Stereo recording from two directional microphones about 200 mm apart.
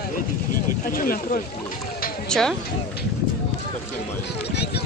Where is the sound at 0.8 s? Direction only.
45° left (ahead or behind).